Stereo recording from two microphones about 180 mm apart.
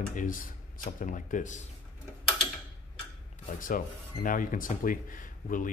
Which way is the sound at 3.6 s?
50° left (ahead or behind).